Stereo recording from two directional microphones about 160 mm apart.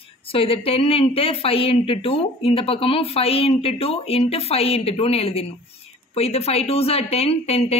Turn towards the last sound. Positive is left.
turn(degrees=40)  # may be behind; listen again after turning